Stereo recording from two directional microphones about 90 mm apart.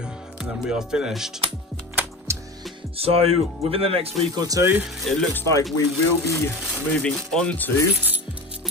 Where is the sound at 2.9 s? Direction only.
90° right.